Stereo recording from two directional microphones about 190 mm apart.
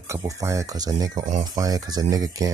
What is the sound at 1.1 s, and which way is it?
Speech, 40° right (ahead or behind).